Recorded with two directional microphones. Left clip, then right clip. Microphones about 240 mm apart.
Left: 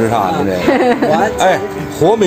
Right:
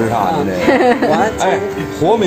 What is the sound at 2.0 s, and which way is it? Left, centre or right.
Speech, left.